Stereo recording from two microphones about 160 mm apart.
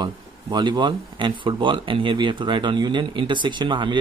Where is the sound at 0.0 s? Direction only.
25° right (ahead or behind).